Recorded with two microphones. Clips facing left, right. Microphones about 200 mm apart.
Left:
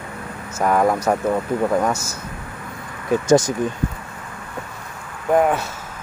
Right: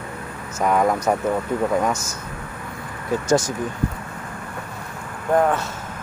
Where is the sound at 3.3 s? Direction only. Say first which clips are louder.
Left 4 dB; 15° left (ahead or behind).